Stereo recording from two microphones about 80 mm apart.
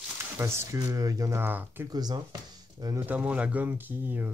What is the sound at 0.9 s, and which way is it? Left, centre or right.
Speech, right.